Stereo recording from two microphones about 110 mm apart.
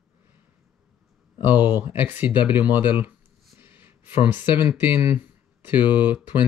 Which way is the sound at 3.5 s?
20° right (ahead or behind).